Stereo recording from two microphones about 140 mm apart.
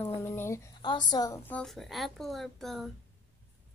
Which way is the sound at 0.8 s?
30° left (ahead or behind).